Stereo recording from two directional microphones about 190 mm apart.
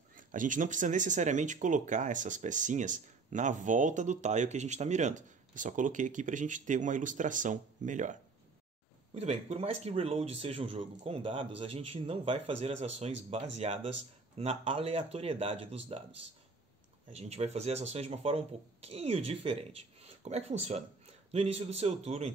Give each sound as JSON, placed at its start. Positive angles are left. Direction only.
{"t": 0.1, "sound": "speech", "side_deg": -45}
{"t": 17.1, "sound": "speech", "side_deg": -35}